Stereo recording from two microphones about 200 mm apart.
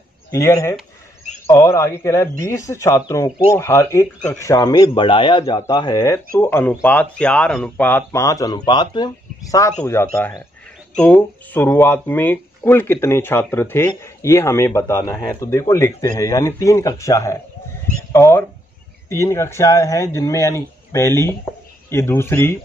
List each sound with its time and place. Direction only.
0.3 s speech: 15° left (ahead or behind)